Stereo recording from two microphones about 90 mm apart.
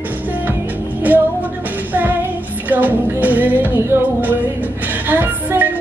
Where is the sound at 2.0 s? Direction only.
20° right (ahead or behind).